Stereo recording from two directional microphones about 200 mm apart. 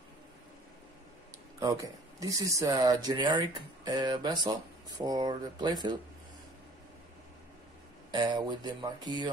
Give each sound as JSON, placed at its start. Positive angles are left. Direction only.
{"t": 1.6, "sound": "speech", "side_deg": -15}
{"t": 8.1, "sound": "speech", "side_deg": -20}